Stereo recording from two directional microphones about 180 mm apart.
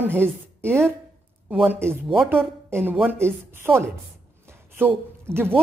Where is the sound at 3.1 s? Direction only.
15° right (ahead or behind).